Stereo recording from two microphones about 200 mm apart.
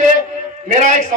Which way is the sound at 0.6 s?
35° right (ahead or behind).